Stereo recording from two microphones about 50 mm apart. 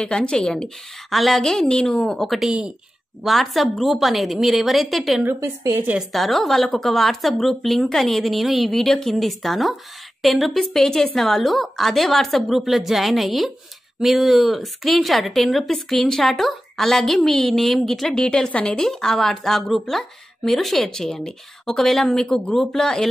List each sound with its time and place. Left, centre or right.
0.0 s speech: centre
1.1 s speech: centre
1.4 s speech: centre
2.0 s speech: centre
5.3 s a woman's voice: right
6.1 s speech: centre
18.5 s speech: left
18.8 s speech: centre